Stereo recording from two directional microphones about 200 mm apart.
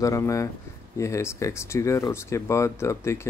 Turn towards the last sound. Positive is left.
turn(degrees=15)  # may be behind; listen again after turning